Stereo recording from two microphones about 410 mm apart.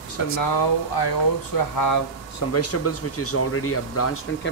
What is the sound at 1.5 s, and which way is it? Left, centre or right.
Speech, left.